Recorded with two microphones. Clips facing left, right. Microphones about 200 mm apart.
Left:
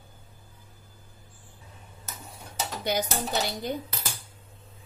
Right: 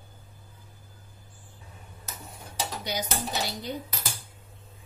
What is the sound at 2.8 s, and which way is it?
Speech, 50° left (ahead or behind).